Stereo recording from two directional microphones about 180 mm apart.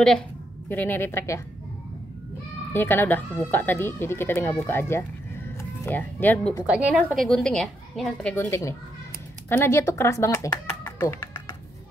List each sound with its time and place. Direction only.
0.7 s speech: 10° left (ahead or behind)
2.7 s speech: 10° left (ahead or behind)
6.6 s a woman's voice: 5° right (ahead or behind); by 11.2 s 15° left (ahead or behind)